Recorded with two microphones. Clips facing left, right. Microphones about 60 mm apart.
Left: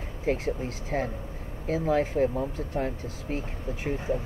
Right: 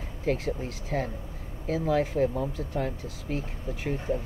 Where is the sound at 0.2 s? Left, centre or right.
Left.